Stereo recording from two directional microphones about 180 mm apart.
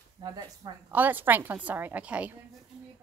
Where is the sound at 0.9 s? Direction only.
10° right (ahead or behind).